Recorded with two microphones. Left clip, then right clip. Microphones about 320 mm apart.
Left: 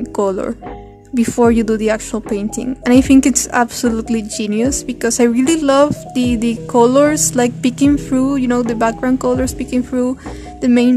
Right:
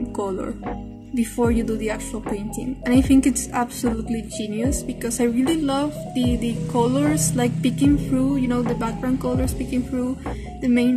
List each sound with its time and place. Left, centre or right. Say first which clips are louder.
0.1 s a woman's voice: left 12 dB; left